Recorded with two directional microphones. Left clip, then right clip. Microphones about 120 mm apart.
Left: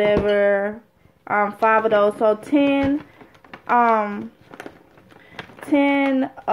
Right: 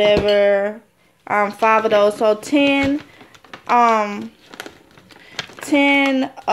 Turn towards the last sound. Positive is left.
turn(degrees=-20)  # may be behind; listen again after turning